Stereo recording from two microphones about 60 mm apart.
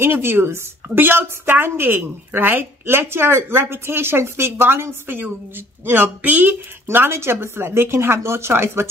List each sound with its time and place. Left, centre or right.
0.0 s a woman's voice: right
6.9 s speech: right